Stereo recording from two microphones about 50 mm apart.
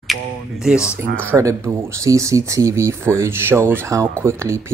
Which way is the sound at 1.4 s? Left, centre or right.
Right.